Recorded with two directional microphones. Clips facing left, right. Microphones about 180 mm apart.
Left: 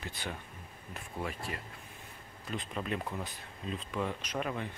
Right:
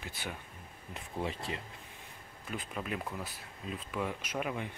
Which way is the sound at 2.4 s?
5° right (ahead or behind).